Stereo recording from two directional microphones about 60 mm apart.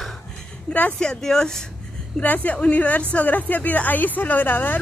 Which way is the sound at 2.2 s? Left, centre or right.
Left.